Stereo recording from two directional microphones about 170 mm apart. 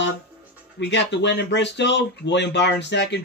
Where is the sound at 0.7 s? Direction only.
90° left.